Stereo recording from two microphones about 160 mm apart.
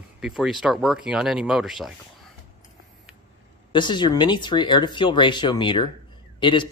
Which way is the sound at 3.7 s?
30° left (ahead or behind).